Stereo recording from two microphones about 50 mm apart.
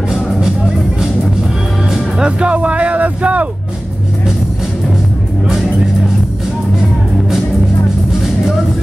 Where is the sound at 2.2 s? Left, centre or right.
Right.